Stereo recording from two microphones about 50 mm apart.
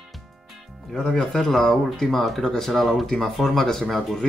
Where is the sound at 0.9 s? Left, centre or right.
Centre.